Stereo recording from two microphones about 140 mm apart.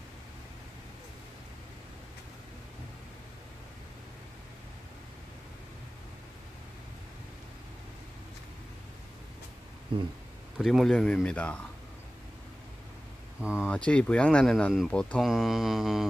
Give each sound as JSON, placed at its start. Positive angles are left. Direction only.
{"t": 9.9, "sound": "speech", "side_deg": -40}
{"t": 10.6, "sound": "speech", "side_deg": 0}
{"t": 13.4, "sound": "speech", "side_deg": -10}
{"t": 13.7, "sound": "speech", "side_deg": 5}